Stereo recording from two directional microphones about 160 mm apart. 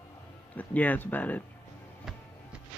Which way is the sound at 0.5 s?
10° left (ahead or behind).